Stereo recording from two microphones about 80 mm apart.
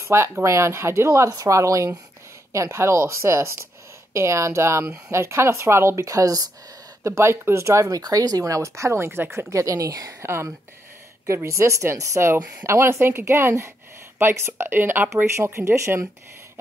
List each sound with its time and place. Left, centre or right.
0.0 s speech: right
7.0 s speech: right
9.5 s speech: right
10.2 s speech: right